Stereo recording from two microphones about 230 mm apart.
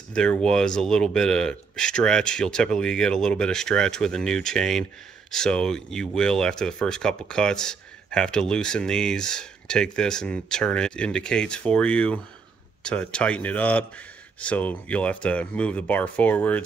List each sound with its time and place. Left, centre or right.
0.1 s speech: centre